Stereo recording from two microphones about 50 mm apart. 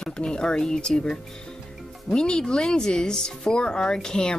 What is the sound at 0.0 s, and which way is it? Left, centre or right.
Speech, centre.